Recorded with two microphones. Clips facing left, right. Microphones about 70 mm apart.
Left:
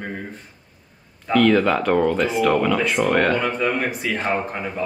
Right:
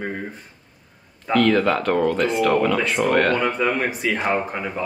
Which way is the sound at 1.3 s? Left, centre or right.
Centre.